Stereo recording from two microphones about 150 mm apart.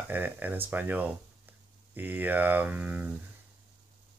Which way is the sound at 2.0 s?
10° right (ahead or behind).